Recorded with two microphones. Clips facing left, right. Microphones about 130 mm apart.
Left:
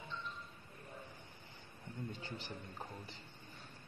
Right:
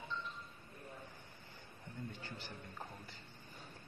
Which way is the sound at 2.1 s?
20° left (ahead or behind).